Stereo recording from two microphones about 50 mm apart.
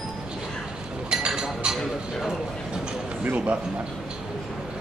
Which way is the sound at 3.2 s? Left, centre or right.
Right.